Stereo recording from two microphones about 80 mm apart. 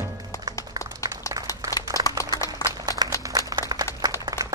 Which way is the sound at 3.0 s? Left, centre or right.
Right.